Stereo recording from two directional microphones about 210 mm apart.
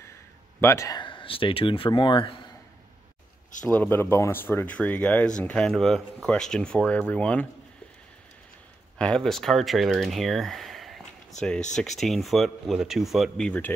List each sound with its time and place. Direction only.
0.6 s speech: 15° left (ahead or behind)
3.6 s speech: 10° left (ahead or behind)
8.9 s speech: 5° left (ahead or behind)